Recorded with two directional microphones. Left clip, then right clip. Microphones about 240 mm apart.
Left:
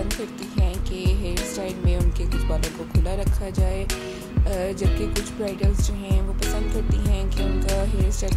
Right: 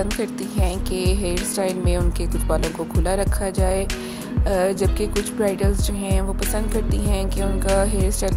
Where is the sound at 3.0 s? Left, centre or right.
Centre.